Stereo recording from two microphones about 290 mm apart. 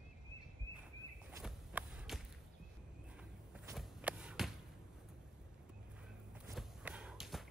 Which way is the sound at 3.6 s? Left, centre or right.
Centre.